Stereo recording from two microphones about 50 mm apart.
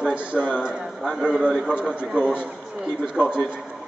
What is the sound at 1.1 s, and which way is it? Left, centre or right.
Speech, centre.